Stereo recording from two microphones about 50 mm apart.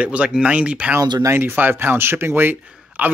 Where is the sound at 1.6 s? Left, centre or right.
Right.